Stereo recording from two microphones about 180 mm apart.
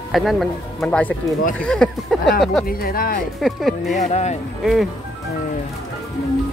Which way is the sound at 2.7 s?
55° left (ahead or behind).